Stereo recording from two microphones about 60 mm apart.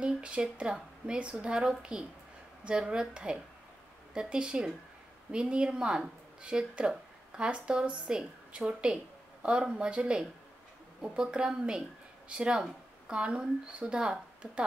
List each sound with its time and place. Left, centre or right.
0.0 s speech: centre